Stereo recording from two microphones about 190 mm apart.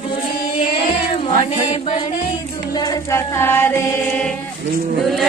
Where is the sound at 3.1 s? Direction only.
10° left (ahead or behind).